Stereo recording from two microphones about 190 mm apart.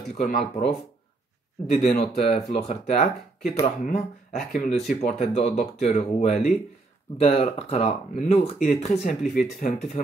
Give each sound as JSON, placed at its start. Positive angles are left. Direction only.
{"t": 0.2, "sound": "speech", "side_deg": 50}
{"t": 1.7, "sound": "speech", "side_deg": 40}
{"t": 4.6, "sound": "speech", "side_deg": 0}
{"t": 5.0, "sound": "speech", "side_deg": 45}